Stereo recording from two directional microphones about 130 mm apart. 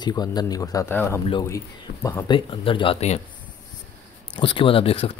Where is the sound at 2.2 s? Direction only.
40° left (ahead or behind).